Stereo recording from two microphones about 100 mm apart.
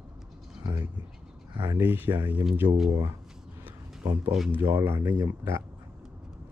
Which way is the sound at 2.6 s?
50° right (ahead or behind).